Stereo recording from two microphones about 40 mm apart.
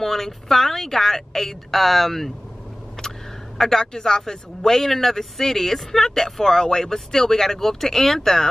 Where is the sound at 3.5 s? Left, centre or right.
Centre.